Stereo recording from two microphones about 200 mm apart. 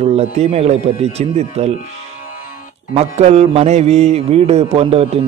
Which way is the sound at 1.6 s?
30° right (ahead or behind).